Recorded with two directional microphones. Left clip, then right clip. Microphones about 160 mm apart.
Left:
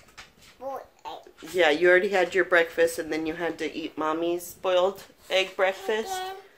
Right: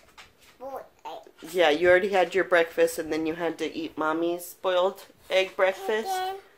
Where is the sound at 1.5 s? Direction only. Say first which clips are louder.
Even; 15° right (ahead or behind).